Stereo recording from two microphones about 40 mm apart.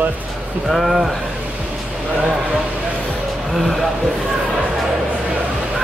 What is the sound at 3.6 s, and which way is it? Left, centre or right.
Speech, centre.